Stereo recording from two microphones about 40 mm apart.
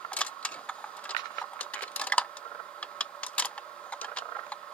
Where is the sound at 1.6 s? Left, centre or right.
Left.